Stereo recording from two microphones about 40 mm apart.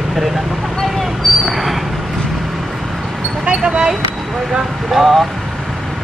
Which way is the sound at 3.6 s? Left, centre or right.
Centre.